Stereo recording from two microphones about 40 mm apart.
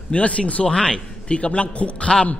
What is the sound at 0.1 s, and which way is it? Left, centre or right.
A man's voice, left.